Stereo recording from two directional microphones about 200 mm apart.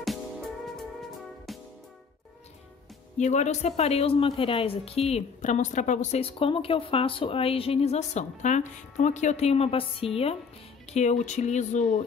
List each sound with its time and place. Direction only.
0.0 s music: centre (ahead or behind)
3.2 s a woman's voice: 35° left (ahead or behind)